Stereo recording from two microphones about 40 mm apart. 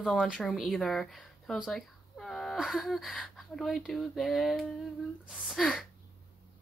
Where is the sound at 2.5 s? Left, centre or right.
Centre.